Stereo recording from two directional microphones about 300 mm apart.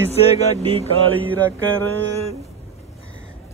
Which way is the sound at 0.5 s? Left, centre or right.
Centre.